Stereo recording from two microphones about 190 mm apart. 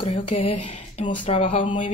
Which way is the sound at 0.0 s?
30° left (ahead or behind).